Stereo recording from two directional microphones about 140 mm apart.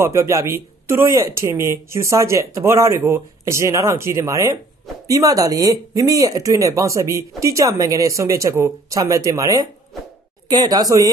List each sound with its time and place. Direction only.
0.0 s speech: 20° right (ahead or behind)